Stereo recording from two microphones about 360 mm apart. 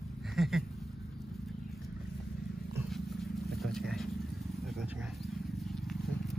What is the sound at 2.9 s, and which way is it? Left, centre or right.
Vehicle, centre.